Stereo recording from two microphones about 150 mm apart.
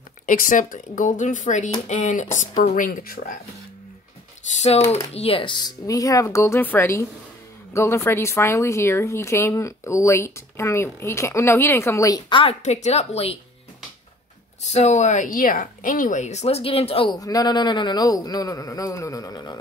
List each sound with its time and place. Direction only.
0.3 s speech: 60° left (ahead or behind)
4.6 s speech: 45° left (ahead or behind); by 12.2 s 20° left (ahead or behind)
12.3 s a woman's voice: 35° left (ahead or behind)
12.6 s a woman's voice: 50° left (ahead or behind)
14.6 s a woman's voice: 50° left (ahead or behind)
17.2 s speech: 25° left (ahead or behind)